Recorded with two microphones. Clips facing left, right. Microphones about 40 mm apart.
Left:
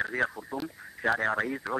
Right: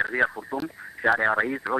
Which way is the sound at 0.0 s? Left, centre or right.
Right.